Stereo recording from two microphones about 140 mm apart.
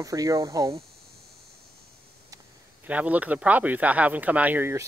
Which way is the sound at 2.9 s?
10° right (ahead or behind).